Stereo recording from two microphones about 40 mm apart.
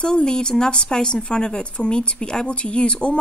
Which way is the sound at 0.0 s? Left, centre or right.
Centre.